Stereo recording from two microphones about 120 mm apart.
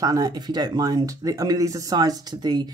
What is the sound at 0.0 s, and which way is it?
Speech, 30° right (ahead or behind).